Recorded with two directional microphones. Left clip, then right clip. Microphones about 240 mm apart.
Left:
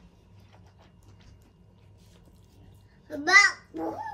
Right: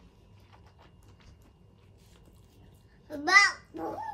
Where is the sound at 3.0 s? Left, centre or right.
Right.